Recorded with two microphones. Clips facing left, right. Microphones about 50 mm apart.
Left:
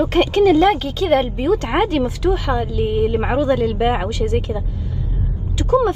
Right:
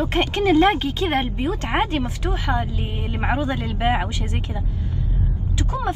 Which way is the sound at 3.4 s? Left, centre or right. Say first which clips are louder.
Left 7 dB; right.